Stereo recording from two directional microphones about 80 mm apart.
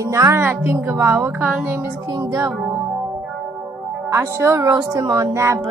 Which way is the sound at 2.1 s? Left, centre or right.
Right.